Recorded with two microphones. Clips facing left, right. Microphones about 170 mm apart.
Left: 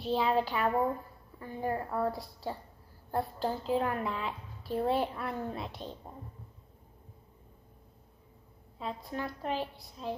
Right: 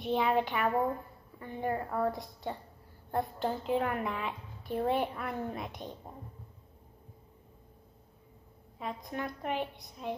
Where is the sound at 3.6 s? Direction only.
30° left (ahead or behind).